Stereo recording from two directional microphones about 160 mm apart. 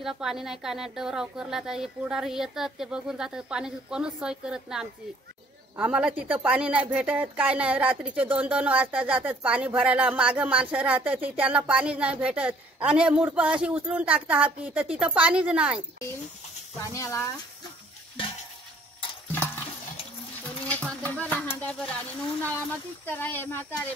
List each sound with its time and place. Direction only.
0.0 s a woman's voice: centre (ahead or behind)
16.9 s speech: 20° left (ahead or behind)
20.6 s speech: 5° left (ahead or behind)
23.0 s speech: 15° left (ahead or behind)